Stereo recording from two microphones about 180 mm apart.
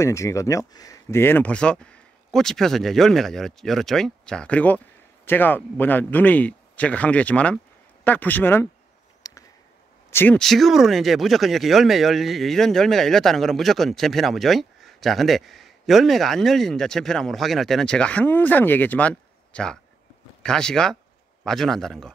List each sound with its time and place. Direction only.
0.0 s speech: 15° left (ahead or behind)
9.2 s a sound: 20° left (ahead or behind)
10.1 s speech: 10° left (ahead or behind)